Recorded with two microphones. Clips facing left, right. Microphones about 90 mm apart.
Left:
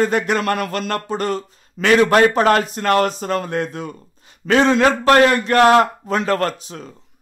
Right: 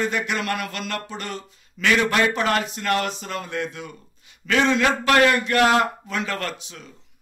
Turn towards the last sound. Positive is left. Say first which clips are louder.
# left 7 dB
turn(degrees=40)  # may be behind; listen again after turning